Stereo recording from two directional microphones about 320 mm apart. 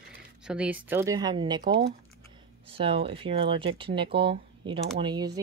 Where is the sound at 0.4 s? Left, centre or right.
Centre.